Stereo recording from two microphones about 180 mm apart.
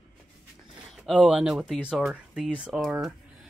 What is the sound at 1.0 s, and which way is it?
Speech, centre (ahead or behind).